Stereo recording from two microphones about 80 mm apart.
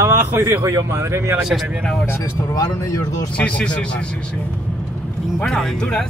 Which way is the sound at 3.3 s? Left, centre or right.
Centre.